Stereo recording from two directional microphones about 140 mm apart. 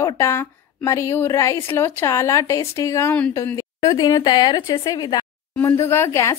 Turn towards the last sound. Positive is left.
turn(degrees=20)  # may be behind; listen again after turning